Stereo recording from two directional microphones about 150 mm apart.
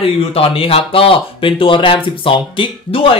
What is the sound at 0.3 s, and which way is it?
Speech, 40° left (ahead or behind).